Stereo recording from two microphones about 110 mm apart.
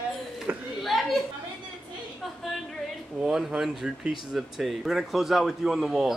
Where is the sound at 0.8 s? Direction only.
Centre (ahead or behind).